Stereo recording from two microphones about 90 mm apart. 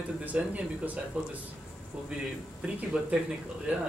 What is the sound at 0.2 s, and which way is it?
Speech, 15° right (ahead or behind).